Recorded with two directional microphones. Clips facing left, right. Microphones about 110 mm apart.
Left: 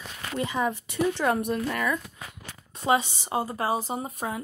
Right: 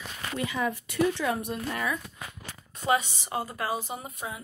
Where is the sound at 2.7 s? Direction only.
30° left (ahead or behind).